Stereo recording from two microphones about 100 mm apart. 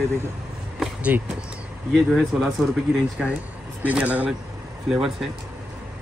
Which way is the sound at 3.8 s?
15° right (ahead or behind).